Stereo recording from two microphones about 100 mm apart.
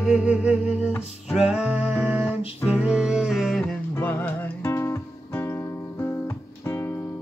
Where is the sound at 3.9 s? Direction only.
20° left (ahead or behind).